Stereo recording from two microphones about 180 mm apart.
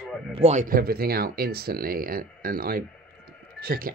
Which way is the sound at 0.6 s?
55° right (ahead or behind).